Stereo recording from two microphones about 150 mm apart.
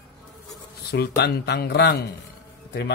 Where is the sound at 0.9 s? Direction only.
90° left.